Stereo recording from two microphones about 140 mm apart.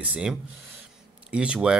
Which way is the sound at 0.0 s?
10° right (ahead or behind).